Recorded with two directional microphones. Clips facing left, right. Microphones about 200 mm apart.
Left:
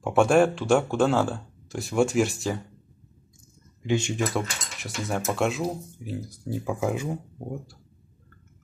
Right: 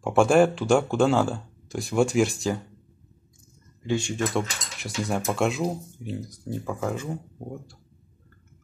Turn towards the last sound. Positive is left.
turn(degrees=15)  # may be behind; listen again after turning